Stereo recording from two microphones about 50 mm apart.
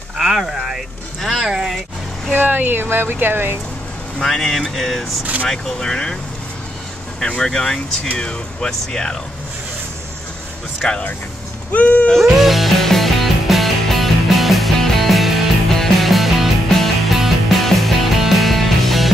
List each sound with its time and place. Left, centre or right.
0.2 s a sound: centre
1.2 s speech: centre
2.3 s speech: right
4.2 s speech: centre
7.2 s speech: centre
11.7 s speech: left
12.4 s music: centre